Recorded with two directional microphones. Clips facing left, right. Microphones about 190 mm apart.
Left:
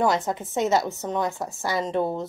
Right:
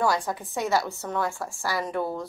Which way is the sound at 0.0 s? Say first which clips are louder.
Left 3 dB; 20° left (ahead or behind).